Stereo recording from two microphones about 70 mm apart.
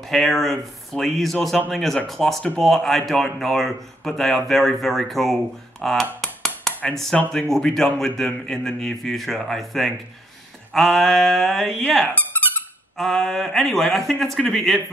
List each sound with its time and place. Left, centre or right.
0.1 s a man's voice: centre
6.2 s chop: centre
6.9 s a man's voice: centre
12.2 s squeak: left
12.9 s a man's voice: centre